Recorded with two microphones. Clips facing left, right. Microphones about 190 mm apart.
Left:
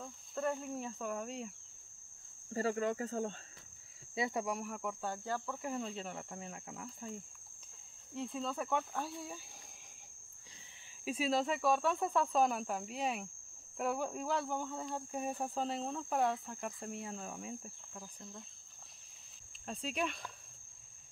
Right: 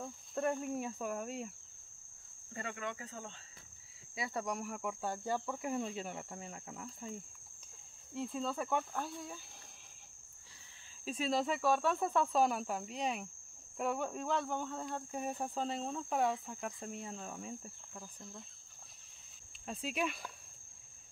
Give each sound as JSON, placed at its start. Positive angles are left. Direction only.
{"t": 0.0, "sound": "speech", "side_deg": -15}
{"t": 2.5, "sound": "cricket", "side_deg": 35}
{"t": 4.1, "sound": "cricket", "side_deg": 25}
{"t": 4.4, "sound": "cricket", "side_deg": 5}
{"t": 11.1, "sound": "cricket", "side_deg": 5}
{"t": 19.6, "sound": "cricket", "side_deg": -5}